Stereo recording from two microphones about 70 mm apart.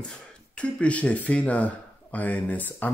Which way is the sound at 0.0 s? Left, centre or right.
Centre.